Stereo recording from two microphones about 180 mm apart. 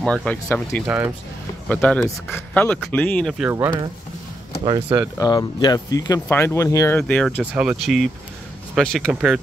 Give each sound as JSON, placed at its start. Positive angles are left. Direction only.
{"t": 0.0, "sound": "speech", "side_deg": 5}
{"t": 0.8, "sound": "speech", "side_deg": -10}
{"t": 1.7, "sound": "speech", "side_deg": 5}
{"t": 3.4, "sound": "speech", "side_deg": -15}
{"t": 5.1, "sound": "speech", "side_deg": 20}
{"t": 7.5, "sound": "speech", "side_deg": -5}